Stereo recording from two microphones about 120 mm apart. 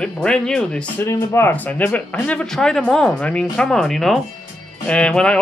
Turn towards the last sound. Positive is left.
turn(degrees=5)  # may be behind; listen again after turning